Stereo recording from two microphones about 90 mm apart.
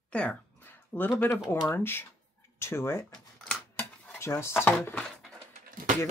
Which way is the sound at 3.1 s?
5° left (ahead or behind).